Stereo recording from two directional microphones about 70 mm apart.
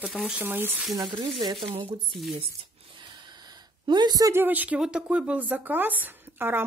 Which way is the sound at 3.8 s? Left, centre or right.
Right.